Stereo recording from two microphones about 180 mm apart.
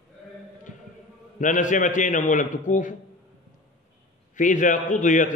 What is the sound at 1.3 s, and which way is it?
A man's voice, 45° left (ahead or behind).